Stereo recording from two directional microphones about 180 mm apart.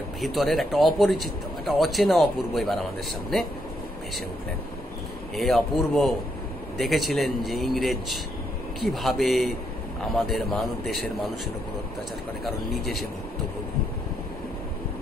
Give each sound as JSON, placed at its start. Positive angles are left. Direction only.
{"t": 0.2, "sound": "a man's voice", "side_deg": 0}
{"t": 5.3, "sound": "a man's voice", "side_deg": 0}
{"t": 12.4, "sound": "a man's voice", "side_deg": 0}